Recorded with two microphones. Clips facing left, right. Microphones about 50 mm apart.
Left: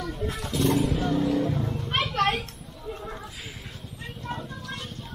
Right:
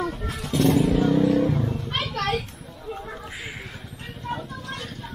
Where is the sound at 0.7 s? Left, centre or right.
Centre.